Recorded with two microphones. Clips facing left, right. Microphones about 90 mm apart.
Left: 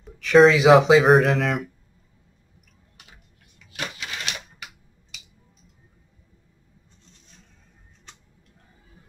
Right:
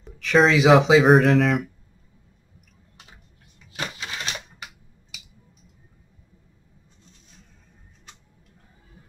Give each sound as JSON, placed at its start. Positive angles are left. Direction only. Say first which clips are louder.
{"t": 0.0, "sound": "speech", "louder": "left 4 dB", "side_deg": 0}
{"t": 3.7, "sound": "typewriter", "louder": "right 1 dB", "side_deg": -35}
{"t": 5.1, "sound": "a sound", "louder": "right 1 dB", "side_deg": -5}